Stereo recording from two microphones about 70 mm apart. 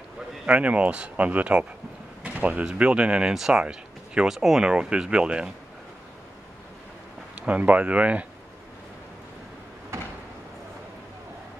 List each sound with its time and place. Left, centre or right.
0.5 s speech: centre
7.3 s speech: centre
9.9 s a sound: right